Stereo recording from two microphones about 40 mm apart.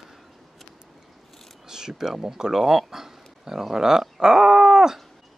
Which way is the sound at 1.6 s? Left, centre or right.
Centre.